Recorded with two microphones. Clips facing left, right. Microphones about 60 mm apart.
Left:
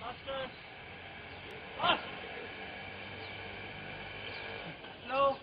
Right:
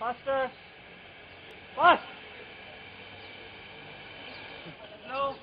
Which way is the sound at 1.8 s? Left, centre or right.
Right.